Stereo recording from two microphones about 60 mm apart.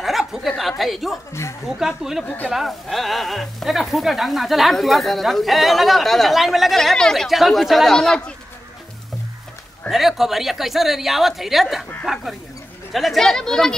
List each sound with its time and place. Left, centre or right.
0.0 s a sound: centre
0.5 s speech: centre
2.2 s speech: left
2.5 s speech: centre
9.8 s speech: centre
12.9 s speech: centre